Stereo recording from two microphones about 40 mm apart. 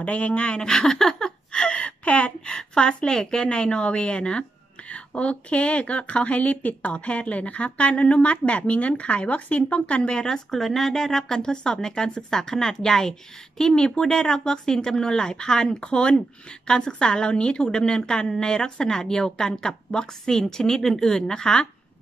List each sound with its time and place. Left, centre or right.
0.0 s speech: left; by 1.3 s centre
1.5 s a woman's voice: left